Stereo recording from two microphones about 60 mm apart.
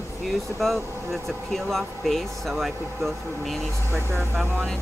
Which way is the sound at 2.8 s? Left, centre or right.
Right.